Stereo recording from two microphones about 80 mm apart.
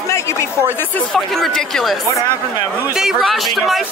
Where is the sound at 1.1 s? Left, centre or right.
Centre.